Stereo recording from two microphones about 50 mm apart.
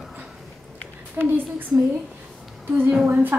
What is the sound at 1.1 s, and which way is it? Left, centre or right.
Speech, right.